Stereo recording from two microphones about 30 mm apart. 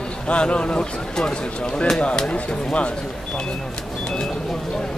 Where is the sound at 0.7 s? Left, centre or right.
Left.